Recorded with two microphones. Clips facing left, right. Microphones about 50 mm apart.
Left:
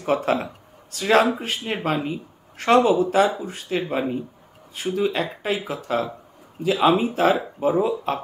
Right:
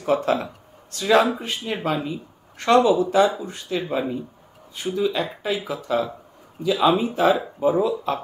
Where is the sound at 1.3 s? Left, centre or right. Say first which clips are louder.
Left 1 dB; centre.